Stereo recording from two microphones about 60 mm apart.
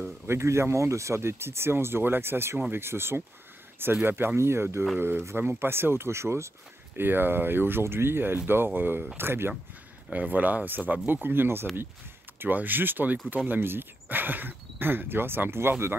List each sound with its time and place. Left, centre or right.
0.3 s speech: right
4.4 s speech: right
7.0 s speech: right
10.1 s speech: right